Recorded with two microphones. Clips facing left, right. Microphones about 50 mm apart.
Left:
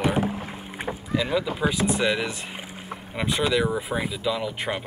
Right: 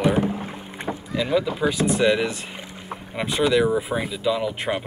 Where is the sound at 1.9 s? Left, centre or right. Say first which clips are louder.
Right 4 dB; centre.